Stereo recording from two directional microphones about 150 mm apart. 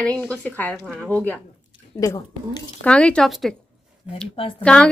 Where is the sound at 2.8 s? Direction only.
5° left (ahead or behind).